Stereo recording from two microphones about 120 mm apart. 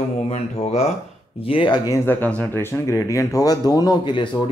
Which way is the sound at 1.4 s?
45° left (ahead or behind).